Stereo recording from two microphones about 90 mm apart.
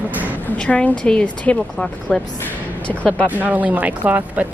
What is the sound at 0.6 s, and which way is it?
A woman's voice, 15° left (ahead or behind).